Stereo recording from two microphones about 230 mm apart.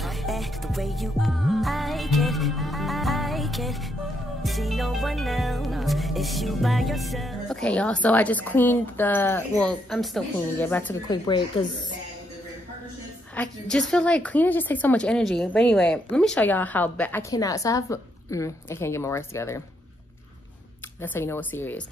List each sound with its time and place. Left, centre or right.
0.0 s music: centre
11.1 s speech: centre
13.4 s a woman's voice: centre
21.0 s a woman's voice: centre